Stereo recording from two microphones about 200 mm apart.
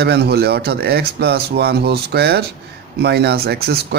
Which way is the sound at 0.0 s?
55° right (ahead or behind).